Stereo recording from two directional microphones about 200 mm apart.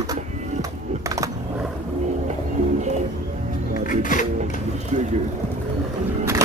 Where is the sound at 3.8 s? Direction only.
40° left (ahead or behind).